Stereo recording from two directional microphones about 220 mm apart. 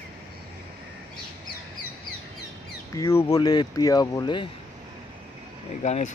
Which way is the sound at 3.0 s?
15° left (ahead or behind).